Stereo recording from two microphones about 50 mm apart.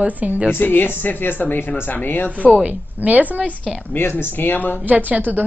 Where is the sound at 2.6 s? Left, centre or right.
Right.